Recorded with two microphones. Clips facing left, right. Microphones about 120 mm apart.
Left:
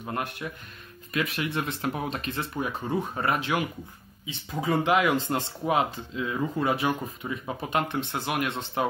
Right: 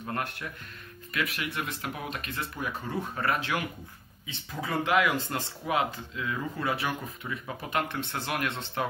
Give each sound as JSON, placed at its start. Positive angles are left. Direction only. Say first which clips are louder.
{"t": 0.0, "sound": "speech", "louder": "left 2 dB", "side_deg": 15}